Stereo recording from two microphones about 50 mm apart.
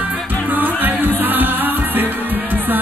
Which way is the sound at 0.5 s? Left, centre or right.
Right.